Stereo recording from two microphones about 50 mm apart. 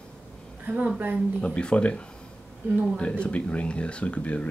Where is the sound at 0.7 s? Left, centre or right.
Right.